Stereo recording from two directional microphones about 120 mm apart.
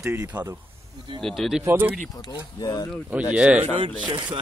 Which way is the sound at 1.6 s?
15° right (ahead or behind).